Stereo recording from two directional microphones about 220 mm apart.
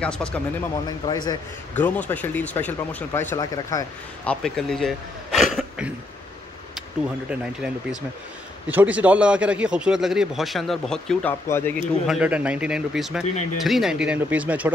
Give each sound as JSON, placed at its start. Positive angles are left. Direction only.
{"t": 0.0, "sound": "a man's voice", "side_deg": 5}
{"t": 0.8, "sound": "speech", "side_deg": 20}
{"t": 7.2, "sound": "a man's voice", "side_deg": -5}
{"t": 12.1, "sound": "a man's voice", "side_deg": -5}